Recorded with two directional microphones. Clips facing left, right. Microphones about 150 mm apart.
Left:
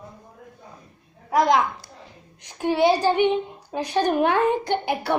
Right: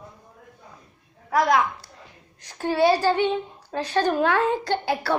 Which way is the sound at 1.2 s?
20° left (ahead or behind).